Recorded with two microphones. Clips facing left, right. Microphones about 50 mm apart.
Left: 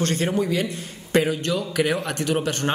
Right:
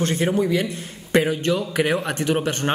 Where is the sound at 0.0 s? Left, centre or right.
Centre.